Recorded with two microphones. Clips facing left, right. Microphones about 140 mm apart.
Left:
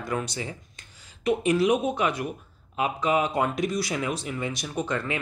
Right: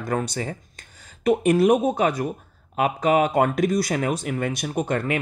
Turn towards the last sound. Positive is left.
turn(degrees=-50)  # may be behind; listen again after turning